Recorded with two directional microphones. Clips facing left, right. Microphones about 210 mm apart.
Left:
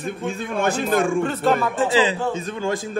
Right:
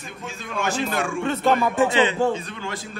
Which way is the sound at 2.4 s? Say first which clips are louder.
Left 8 dB; 45° left (ahead or behind).